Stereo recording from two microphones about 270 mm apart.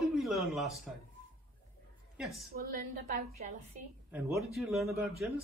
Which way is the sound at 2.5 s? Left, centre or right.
Right.